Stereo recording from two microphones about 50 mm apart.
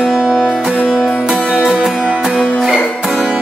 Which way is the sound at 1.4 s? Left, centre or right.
Left.